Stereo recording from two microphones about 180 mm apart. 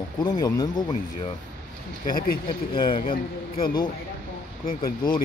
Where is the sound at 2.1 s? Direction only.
55° left (ahead or behind).